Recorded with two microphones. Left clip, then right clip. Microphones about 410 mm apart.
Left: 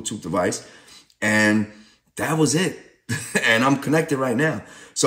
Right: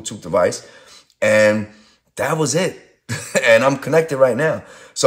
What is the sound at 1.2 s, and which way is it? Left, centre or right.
Speech, right.